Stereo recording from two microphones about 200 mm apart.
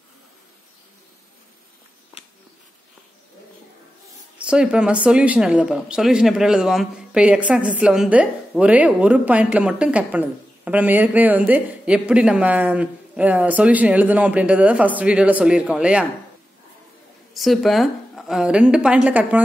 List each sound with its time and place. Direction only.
4.5 s speech: 5° right (ahead or behind)
17.3 s speech: centre (ahead or behind)